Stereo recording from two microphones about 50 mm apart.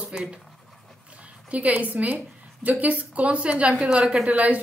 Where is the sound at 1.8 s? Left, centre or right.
Right.